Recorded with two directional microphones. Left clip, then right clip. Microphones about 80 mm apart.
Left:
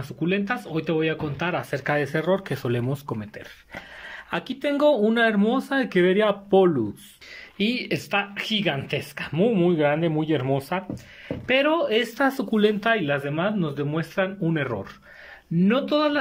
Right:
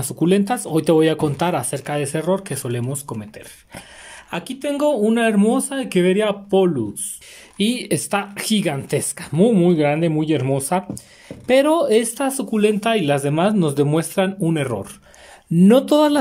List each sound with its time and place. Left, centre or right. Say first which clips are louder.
0.2 s speech: right 7 dB; right
1.5 s speech: right 2 dB; right; by 3.3 s centre
4.3 s speech: right 2 dB; centre
7.5 s speech: right 4 dB; right
9.3 s speech: right 5 dB; right
11.2 s speech: right 6 dB; right
12.3 s speech: right 3 dB; right
12.9 s speech: right 5 dB; right
13.6 s speech: right 9 dB; right
14.1 s speech: right 5 dB; right
14.5 s speech: right 4 dB; right
15.6 s speech: right 8 dB; right